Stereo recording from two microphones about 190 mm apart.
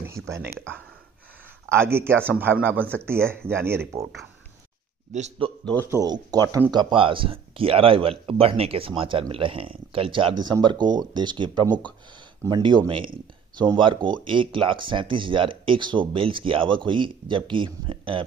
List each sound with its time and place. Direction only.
1.7 s speech: 10° right (ahead or behind)
5.1 s a man's voice: 35° right (ahead or behind)
5.9 s speech: 20° right (ahead or behind)